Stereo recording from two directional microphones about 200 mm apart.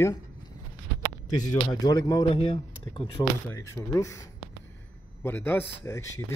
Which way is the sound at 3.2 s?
15° left (ahead or behind).